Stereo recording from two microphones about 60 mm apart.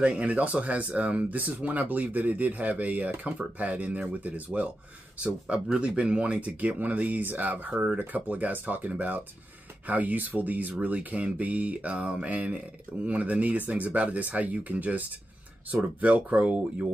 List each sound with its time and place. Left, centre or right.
0.0 s speech: right